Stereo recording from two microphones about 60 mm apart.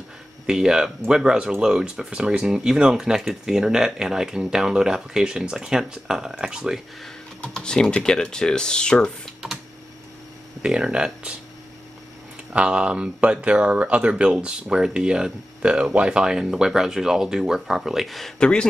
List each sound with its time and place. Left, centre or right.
0.5 s speech: centre
7.4 s speech: centre
10.6 s speech: centre
12.5 s speech: centre
18.4 s speech: centre